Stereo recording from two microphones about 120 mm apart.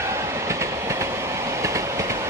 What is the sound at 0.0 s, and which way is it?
Train, 25° right (ahead or behind).